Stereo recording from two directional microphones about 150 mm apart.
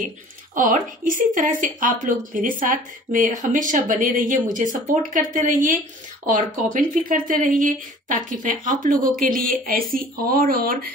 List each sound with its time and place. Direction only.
0.6 s speech: 60° right (ahead or behind)